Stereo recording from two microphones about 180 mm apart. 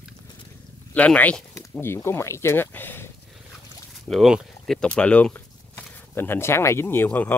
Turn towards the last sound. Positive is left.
turn(degrees=10)  # may be behind; listen again after turning